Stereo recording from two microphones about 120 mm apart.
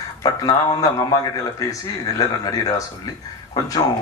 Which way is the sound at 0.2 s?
30° left (ahead or behind).